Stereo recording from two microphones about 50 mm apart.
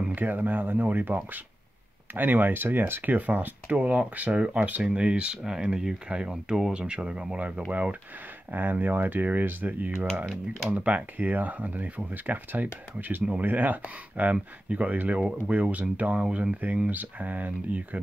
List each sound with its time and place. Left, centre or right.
0.1 s speech: right
5.4 s speech: centre; by 8.0 s right
8.5 s speech: right